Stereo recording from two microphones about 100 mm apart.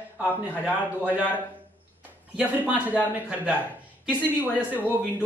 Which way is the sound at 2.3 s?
15° right (ahead or behind).